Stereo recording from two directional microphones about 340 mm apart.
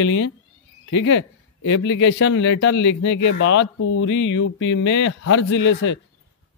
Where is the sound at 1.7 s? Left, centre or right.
Left.